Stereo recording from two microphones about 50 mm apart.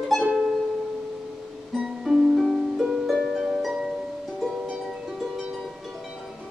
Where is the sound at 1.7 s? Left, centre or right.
Centre.